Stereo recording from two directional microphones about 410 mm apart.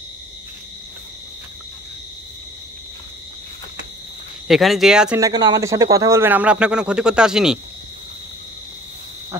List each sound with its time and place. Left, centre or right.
4.5 s speech: centre